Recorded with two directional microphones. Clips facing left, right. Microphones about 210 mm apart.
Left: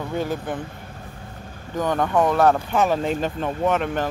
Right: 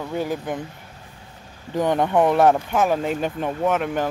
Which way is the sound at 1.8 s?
20° right (ahead or behind).